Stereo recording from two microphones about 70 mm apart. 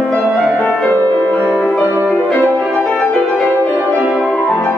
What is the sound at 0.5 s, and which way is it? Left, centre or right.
Music, left.